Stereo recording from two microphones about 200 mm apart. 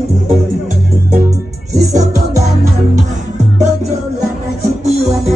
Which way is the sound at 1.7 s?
15° right (ahead or behind).